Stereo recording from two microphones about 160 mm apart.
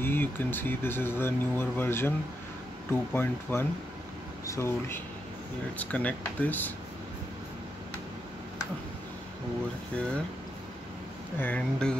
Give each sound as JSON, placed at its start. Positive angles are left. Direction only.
{"t": 0.0, "sound": "speech", "side_deg": 15}
{"t": 11.3, "sound": "speech", "side_deg": 10}